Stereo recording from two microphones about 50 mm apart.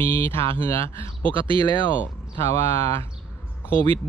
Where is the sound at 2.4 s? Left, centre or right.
Left.